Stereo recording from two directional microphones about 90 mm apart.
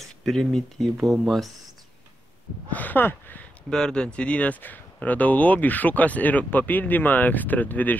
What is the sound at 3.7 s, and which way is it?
Speech, 10° left (ahead or behind).